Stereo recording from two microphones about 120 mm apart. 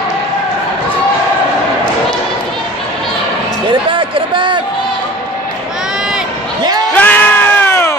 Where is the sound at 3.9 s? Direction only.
45° right (ahead or behind).